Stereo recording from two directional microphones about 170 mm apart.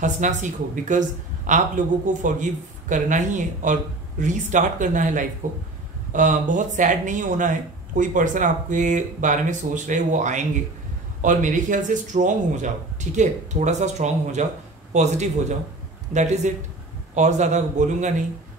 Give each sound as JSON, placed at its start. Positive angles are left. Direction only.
{"t": 0.0, "sound": "speech", "side_deg": -45}